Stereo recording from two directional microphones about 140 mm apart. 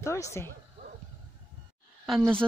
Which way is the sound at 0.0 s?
20° left (ahead or behind).